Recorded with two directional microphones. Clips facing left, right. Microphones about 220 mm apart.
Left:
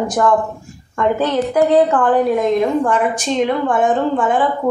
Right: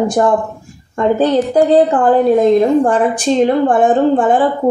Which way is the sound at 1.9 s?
30° right (ahead or behind).